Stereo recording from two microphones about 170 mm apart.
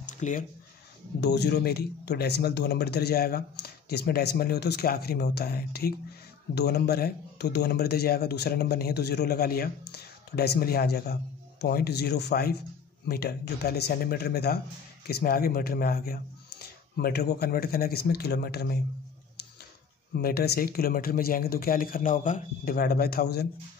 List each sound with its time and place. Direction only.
0.0 s a sound: 50° left (ahead or behind)
1.2 s speech: 80° left
20.2 s speech: 65° left (ahead or behind)